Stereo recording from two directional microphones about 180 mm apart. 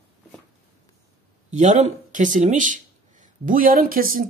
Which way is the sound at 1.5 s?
40° right (ahead or behind).